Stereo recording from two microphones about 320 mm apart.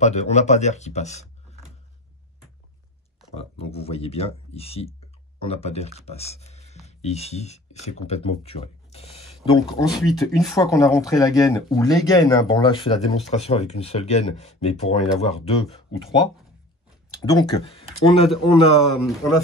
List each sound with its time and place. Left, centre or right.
0.0 s speech: left
3.3 s speech: centre